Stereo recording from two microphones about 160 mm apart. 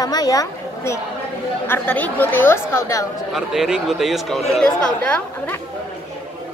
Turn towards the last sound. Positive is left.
turn(degrees=10)  # may be behind; listen again after turning